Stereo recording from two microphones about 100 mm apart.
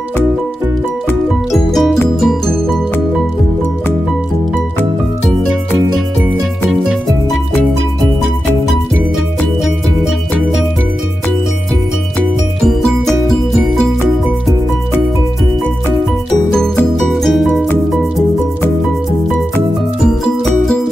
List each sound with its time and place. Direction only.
1.5 s music: centre (ahead or behind)
6.7 s music: centre (ahead or behind)
17.1 s music: centre (ahead or behind)